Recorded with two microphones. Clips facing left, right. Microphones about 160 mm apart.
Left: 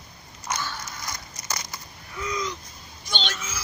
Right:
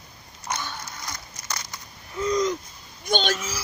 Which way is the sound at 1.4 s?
10° left (ahead or behind).